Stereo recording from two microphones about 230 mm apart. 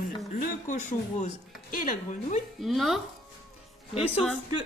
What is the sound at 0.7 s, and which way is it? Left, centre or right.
Speech, left.